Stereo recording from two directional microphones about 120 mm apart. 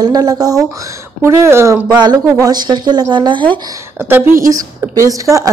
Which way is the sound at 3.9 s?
20° right (ahead or behind).